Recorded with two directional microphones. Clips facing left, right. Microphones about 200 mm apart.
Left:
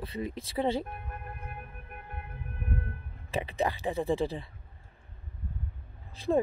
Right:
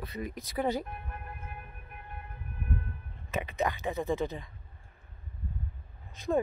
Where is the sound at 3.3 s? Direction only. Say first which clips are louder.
Left 1 dB; 30° left (ahead or behind).